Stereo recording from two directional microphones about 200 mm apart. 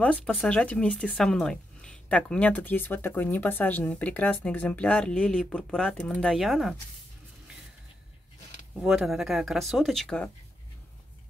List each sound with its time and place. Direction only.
0.0 s speech: 5° left (ahead or behind)
8.7 s speech: centre (ahead or behind)